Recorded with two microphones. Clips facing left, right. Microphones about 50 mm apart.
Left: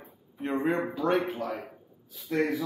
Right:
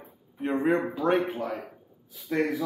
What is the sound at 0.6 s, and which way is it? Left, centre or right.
Speech, centre.